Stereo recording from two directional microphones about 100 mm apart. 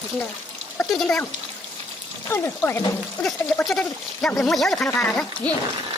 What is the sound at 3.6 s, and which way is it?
Speech, 10° left (ahead or behind).